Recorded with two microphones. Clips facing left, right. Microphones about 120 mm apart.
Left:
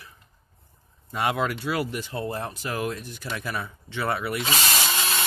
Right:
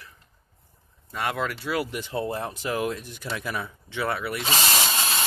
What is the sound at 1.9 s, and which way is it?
Speech, 20° right (ahead or behind).